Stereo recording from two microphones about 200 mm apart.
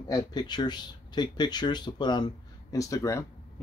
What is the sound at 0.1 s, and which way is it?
Speech, 20° left (ahead or behind).